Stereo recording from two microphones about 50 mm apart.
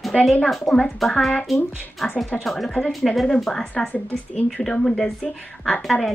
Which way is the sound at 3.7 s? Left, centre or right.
Left.